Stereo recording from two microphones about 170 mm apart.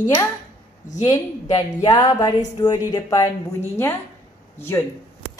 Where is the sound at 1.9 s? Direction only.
20° left (ahead or behind).